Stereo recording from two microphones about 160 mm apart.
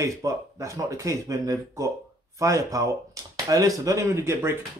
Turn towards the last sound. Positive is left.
turn(degrees=-15)  # may be behind; listen again after turning